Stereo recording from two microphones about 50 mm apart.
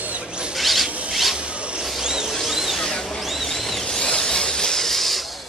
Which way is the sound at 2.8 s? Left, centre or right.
Centre.